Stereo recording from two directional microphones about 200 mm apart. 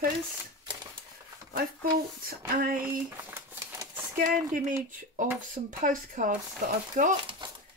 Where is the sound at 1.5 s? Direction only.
45° right (ahead or behind).